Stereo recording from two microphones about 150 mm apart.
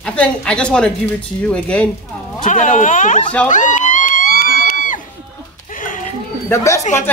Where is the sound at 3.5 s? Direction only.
55° left (ahead or behind).